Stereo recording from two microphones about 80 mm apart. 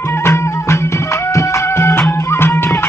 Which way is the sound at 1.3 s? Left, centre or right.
Left.